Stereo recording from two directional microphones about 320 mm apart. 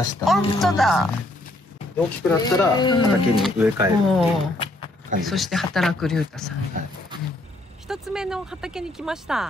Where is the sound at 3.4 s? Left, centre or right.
Centre.